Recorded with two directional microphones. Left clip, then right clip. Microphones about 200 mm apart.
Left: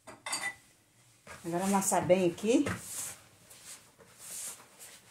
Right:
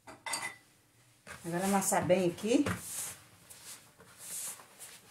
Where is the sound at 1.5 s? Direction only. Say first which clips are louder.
Left 1 dB; 20° left (ahead or behind).